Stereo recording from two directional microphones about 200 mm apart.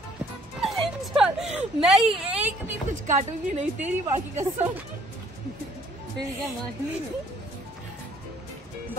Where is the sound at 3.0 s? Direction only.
35° right (ahead or behind).